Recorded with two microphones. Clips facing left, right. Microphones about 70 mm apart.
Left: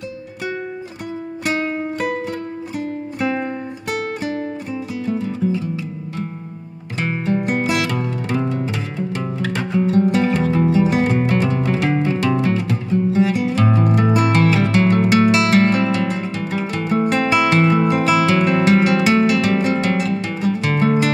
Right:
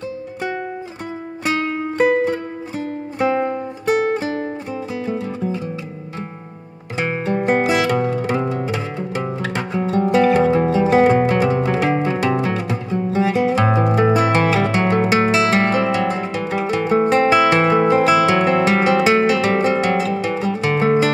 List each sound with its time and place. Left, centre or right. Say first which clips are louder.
3.8 s music: right 7 dB; right
7.4 s music: right 3 dB; right
11.7 s music: right 1 dB; centre
12.3 s music: left 1 dB; right